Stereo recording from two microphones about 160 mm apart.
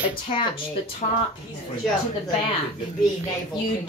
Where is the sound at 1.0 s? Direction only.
45° left (ahead or behind).